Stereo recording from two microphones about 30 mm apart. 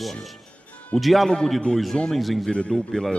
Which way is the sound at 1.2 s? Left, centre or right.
Centre.